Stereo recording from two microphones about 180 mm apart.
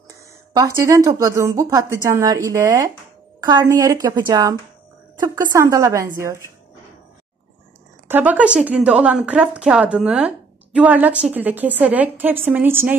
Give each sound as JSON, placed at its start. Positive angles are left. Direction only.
{"t": 0.5, "sound": "a woman's voice", "side_deg": -20}
{"t": 8.1, "sound": "a woman's voice", "side_deg": -10}